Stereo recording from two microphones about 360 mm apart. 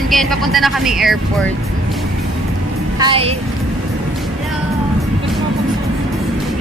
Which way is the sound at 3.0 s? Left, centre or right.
Centre.